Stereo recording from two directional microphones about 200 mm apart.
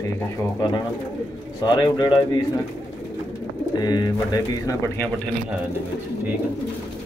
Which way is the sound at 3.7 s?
20° left (ahead or behind).